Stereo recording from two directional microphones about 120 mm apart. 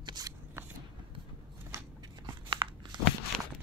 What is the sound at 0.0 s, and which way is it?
Shuffling cards, 35° right (ahead or behind).